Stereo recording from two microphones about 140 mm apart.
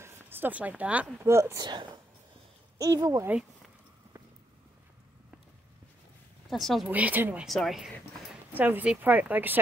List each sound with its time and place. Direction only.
0.0 s a sound: 15° right (ahead or behind)
1.2 s speech: 20° right (ahead or behind)
1.6 s speech: 30° right (ahead or behind)
6.5 s speech: centre (ahead or behind)
6.9 s speech: 10° right (ahead or behind)
7.4 s speech: centre (ahead or behind)
8.5 s speech: 15° right (ahead or behind)